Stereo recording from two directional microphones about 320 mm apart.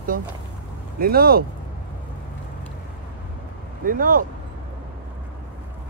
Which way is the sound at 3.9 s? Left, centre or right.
Right.